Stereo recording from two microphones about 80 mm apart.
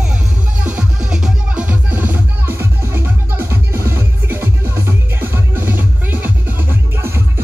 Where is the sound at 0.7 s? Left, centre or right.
Centre.